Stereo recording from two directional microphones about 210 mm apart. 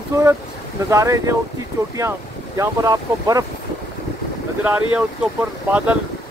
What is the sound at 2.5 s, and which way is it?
Speech, 15° right (ahead or behind).